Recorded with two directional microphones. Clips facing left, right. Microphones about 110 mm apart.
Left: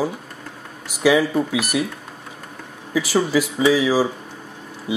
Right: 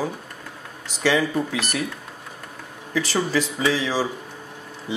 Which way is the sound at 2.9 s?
10° left (ahead or behind).